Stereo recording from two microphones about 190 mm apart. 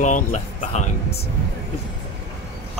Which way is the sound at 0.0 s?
40° left (ahead or behind).